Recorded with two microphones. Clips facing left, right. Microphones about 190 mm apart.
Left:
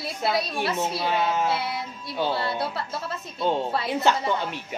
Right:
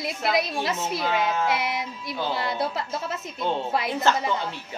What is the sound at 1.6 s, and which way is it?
Music, 15° right (ahead or behind).